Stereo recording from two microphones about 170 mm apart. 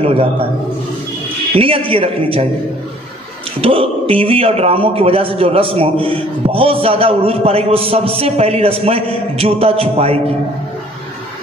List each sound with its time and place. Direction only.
0.0 s a man's voice: 35° right (ahead or behind)
1.5 s a man's voice: 35° right (ahead or behind)
3.6 s a man's voice: 35° right (ahead or behind)